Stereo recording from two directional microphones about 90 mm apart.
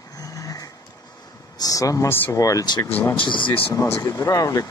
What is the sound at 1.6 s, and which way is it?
Speech, 40° left (ahead or behind).